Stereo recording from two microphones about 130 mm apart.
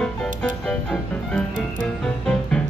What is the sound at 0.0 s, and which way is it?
Music, 5° left (ahead or behind).